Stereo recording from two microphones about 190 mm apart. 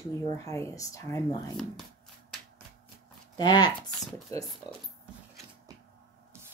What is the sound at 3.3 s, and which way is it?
Speech, 25° left (ahead or behind).